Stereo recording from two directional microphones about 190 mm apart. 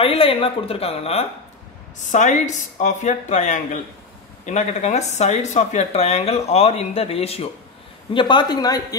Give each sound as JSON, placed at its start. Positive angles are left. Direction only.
{"t": 0.0, "sound": "speech", "side_deg": 30}